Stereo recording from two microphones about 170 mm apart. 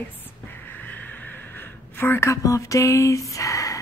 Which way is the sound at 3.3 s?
20° left (ahead or behind).